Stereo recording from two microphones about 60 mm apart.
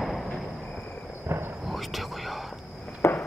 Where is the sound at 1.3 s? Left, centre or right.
Right.